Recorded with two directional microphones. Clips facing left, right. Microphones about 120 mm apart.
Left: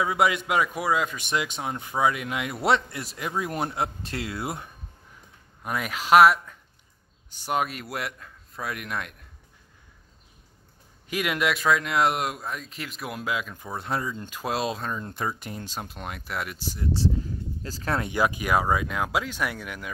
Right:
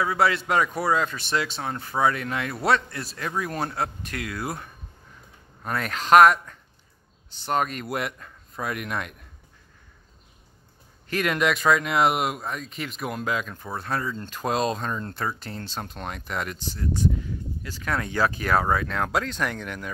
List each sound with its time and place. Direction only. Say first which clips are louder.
0.0 s a man's voice: right 1 dB; 20° left (ahead or behind)
5.6 s speech: right 1 dB; 10° left (ahead or behind)
11.1 s speech: right 2 dB; 5° left (ahead or behind)
13.7 s speech: right 1 dB; 20° left (ahead or behind); by 15.0 s 5° left (ahead or behind)
15.0 s speech: even; 15° left (ahead or behind)
16.8 s speech: right 1 dB; 30° left (ahead or behind); by 19.9 s 10° left (ahead or behind)